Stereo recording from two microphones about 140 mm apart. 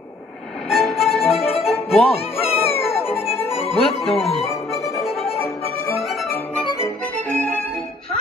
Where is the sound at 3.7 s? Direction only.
45° left (ahead or behind).